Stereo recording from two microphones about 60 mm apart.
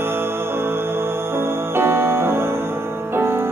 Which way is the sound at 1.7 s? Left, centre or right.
Right.